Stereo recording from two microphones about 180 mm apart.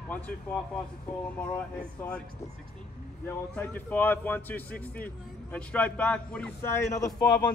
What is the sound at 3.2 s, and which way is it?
A man's voice, 10° left (ahead or behind).